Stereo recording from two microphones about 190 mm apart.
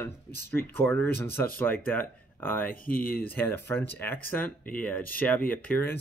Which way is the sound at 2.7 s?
50° left (ahead or behind).